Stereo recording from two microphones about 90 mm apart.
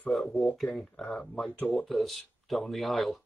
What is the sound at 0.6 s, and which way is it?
Speech, centre (ahead or behind).